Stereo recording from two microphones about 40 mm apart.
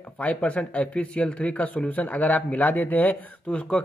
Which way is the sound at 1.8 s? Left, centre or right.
Left.